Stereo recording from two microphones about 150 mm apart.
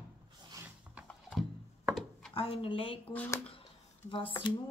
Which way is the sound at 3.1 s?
20° left (ahead or behind).